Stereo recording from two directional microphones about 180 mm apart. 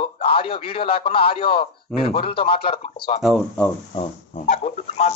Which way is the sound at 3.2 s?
Centre (ahead or behind).